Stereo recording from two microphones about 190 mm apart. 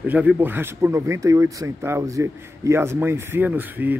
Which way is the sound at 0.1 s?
5° right (ahead or behind).